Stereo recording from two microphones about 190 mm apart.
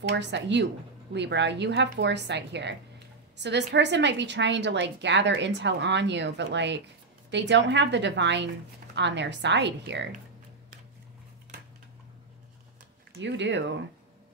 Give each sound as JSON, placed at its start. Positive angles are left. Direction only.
{"t": 0.1, "sound": "a woman's voice", "side_deg": -70}
{"t": 13.2, "sound": "a woman's voice", "side_deg": -70}